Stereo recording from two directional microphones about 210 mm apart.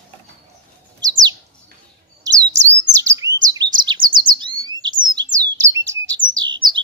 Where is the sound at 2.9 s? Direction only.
15° right (ahead or behind).